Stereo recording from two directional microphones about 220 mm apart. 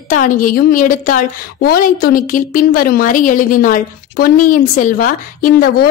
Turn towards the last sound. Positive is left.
turn(degrees=40)  # may be behind; listen again after turning